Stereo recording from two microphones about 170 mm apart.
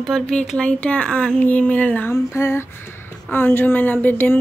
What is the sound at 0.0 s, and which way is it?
Speech, 5° left (ahead or behind).